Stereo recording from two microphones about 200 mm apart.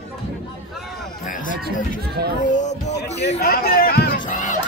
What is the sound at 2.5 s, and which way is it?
Speech, 35° left (ahead or behind).